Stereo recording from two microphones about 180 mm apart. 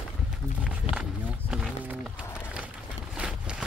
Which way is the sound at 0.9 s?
30° left (ahead or behind).